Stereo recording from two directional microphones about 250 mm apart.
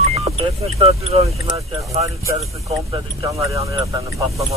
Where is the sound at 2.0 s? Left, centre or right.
Centre.